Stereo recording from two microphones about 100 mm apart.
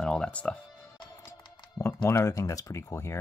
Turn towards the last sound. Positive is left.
turn(degrees=30)  # may be behind; listen again after turning